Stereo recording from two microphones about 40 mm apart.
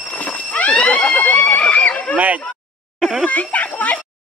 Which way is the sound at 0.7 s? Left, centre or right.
Left.